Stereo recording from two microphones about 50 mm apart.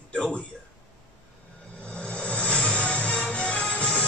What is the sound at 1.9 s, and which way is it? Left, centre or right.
Music, left.